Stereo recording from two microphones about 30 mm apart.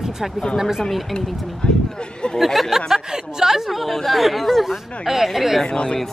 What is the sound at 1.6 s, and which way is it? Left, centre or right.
Speech, left.